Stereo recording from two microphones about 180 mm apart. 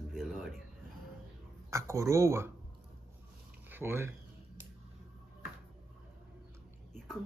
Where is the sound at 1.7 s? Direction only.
15° right (ahead or behind).